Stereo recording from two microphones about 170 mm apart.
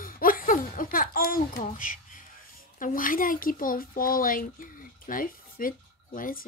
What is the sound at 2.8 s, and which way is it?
A woman's voice, 55° left (ahead or behind).